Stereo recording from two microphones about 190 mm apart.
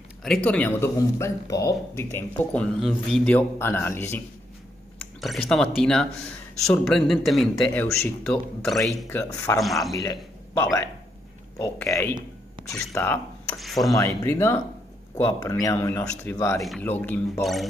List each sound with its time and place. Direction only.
0.2 s speech: 5° left (ahead or behind)
5.2 s speech: centre (ahead or behind)
9.0 s speech: 15° left (ahead or behind)
9.6 s speech: centre (ahead or behind)
9.9 s speech: 15° left (ahead or behind)
13.6 s speech: centre (ahead or behind)
13.9 s speech: 15° left (ahead or behind)